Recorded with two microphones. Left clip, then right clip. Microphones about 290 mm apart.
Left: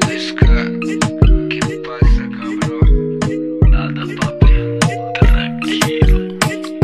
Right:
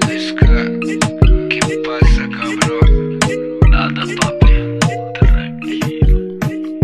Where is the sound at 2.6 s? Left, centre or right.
Right.